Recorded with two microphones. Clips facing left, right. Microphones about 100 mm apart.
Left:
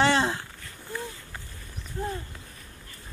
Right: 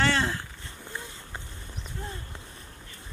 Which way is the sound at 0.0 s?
20° left (ahead or behind).